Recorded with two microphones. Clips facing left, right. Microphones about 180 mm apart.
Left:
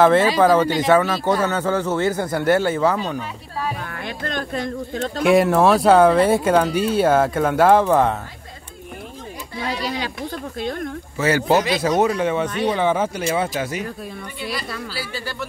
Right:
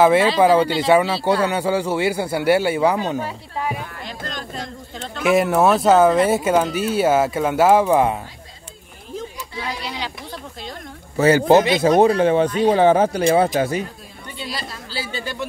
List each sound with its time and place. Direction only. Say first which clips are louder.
0.0 s a man's voice: even; 10° right (ahead or behind)
3.9 s speech: left 4 dB; 60° left (ahead or behind)
5.2 s speech: left 1 dB; centre (ahead or behind)
9.8 s speech: left 4 dB; 50° left (ahead or behind)
11.1 s speech: right 5 dB; 30° right (ahead or behind)
14.9 s speech: right 1 dB; 25° right (ahead or behind)